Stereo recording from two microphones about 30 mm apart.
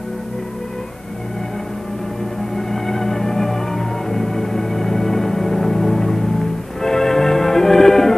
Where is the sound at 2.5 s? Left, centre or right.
Centre.